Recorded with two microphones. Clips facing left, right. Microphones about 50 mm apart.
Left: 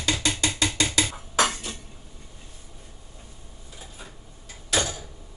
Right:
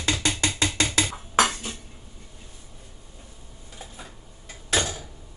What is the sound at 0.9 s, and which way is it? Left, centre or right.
Music, right.